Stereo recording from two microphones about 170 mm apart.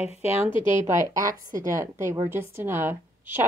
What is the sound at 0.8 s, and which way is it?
A woman's voice, 15° right (ahead or behind).